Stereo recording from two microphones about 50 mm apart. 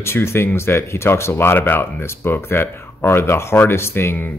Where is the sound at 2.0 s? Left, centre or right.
Left.